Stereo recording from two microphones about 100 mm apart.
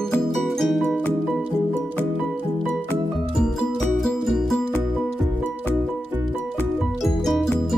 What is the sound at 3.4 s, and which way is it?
Music, 5° left (ahead or behind).